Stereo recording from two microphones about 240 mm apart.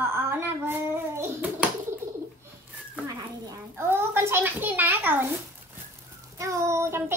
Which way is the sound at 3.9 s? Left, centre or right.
Centre.